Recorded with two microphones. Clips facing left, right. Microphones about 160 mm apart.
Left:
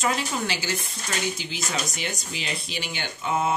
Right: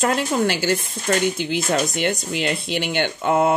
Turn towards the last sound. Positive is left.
turn(degrees=-60)  # may be behind; listen again after turning